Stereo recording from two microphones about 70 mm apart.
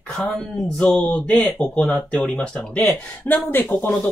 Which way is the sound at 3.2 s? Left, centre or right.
Left.